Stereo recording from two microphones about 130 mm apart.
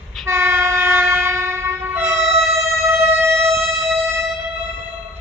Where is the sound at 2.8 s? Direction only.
20° right (ahead or behind).